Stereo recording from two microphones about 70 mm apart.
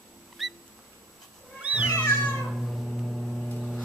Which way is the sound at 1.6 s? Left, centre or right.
Centre.